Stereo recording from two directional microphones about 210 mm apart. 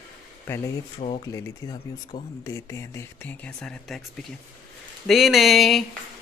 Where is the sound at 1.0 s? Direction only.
35° left (ahead or behind).